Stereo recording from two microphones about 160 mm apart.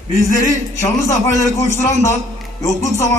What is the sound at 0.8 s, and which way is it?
A man's voice, 20° left (ahead or behind).